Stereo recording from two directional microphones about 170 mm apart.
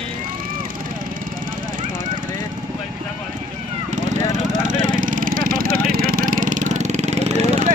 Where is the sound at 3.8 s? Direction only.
45° right (ahead or behind).